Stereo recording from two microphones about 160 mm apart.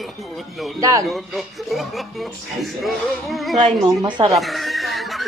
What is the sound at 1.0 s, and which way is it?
Speech, centre (ahead or behind).